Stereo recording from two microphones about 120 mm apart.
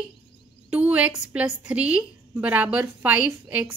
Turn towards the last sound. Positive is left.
turn(degrees=-10)  # may be behind; listen again after turning